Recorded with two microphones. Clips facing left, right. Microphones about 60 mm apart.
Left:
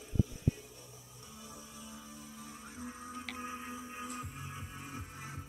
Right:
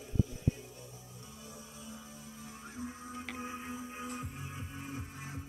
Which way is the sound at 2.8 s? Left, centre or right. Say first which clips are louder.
Right 2 dB; centre.